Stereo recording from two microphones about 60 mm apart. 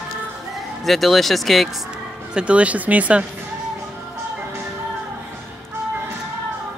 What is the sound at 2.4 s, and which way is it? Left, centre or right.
Speech, right.